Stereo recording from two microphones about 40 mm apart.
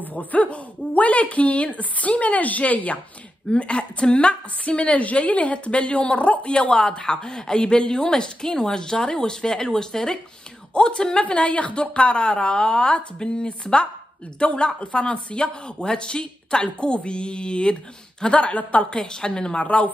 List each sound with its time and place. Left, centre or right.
0.0 s a woman's voice: left
3.4 s a woman's voice: left